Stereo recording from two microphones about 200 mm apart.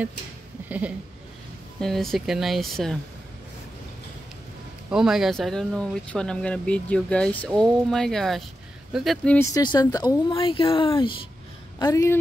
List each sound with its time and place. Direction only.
0.7 s speech: 10° right (ahead or behind)
4.8 s a woman's voice: 5° right (ahead or behind); by 12.2 s 15° left (ahead or behind)